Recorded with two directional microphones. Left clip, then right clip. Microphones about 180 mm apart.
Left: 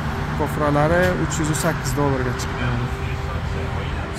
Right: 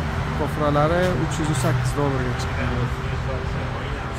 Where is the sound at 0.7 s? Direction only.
Centre (ahead or behind).